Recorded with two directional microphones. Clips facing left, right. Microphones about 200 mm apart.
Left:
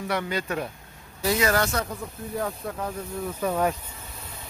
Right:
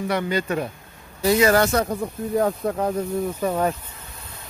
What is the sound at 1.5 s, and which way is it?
Speech, 40° right (ahead or behind).